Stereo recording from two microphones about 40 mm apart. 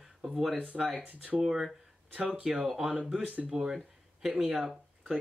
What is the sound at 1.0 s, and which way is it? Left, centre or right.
Speech, right.